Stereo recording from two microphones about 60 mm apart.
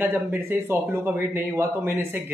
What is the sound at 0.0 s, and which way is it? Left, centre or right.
Speech, right.